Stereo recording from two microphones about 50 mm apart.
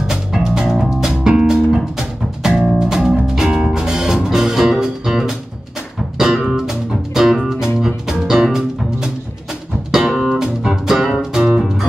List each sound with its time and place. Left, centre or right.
0.0 s music: centre
9.8 s music: centre